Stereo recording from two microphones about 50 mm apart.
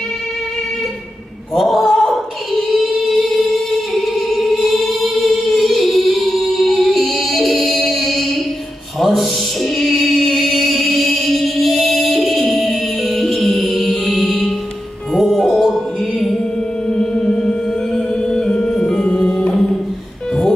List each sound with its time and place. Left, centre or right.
1.5 s singing: centre
9.0 s music: centre
16.9 s music: centre